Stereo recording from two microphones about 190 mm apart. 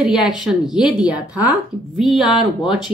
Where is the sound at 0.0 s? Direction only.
5° right (ahead or behind).